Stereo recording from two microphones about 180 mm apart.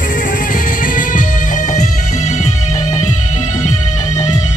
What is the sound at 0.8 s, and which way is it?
Music, 50° left (ahead or behind).